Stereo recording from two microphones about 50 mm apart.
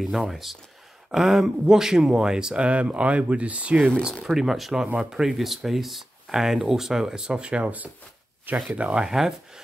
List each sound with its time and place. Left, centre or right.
0.0 s speech: centre; by 3.7 s right
4.1 s speech: centre; by 7.7 s right
8.7 s speech: right